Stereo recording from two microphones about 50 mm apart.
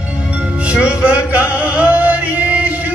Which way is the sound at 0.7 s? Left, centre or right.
Right.